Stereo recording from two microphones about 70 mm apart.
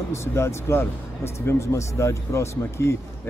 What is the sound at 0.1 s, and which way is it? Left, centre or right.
Speech, left.